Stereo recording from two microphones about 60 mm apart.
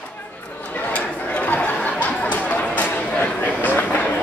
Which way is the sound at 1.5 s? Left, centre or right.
Left.